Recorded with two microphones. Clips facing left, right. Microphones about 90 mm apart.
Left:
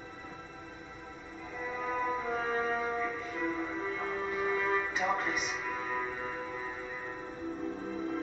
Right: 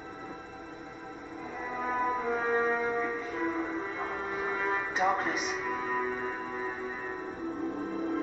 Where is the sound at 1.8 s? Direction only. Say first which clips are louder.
Right 4 dB; 30° right (ahead or behind).